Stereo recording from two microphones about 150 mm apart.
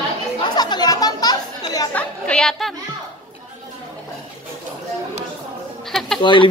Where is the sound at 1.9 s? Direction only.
5° left (ahead or behind).